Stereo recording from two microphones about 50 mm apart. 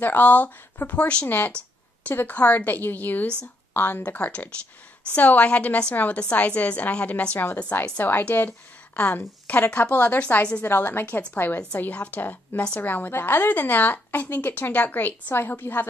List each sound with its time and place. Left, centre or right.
0.0 s a woman's voice: left
1.2 s a woman's voice: left
4.1 s a woman's voice: left
8.0 s a woman's voice: left
10.6 s a woman's voice: left
11.7 s a woman's voice: left